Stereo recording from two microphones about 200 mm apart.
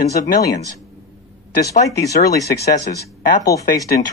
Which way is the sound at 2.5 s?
50° left (ahead or behind).